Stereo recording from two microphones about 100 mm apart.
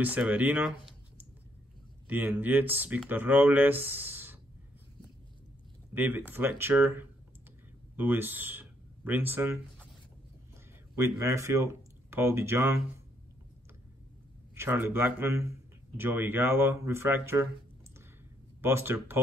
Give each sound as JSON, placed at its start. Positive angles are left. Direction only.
{"t": 0.0, "sound": "speech", "side_deg": -15}
{"t": 2.0, "sound": "speech", "side_deg": -20}
{"t": 5.9, "sound": "speech", "side_deg": -20}
{"t": 11.1, "sound": "speech", "side_deg": -30}
{"t": 14.5, "sound": "speech", "side_deg": -25}
{"t": 18.6, "sound": "speech", "side_deg": -25}